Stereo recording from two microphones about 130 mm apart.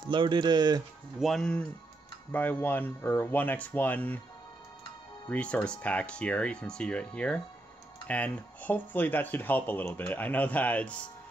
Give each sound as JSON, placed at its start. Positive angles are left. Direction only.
{"t": 0.1, "sound": "speech", "side_deg": -35}
{"t": 1.2, "sound": "speech", "side_deg": 5}
{"t": 5.3, "sound": "speech", "side_deg": 10}